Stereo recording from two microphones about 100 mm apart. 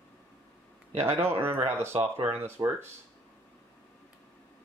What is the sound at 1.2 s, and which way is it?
Speech, 25° right (ahead or behind).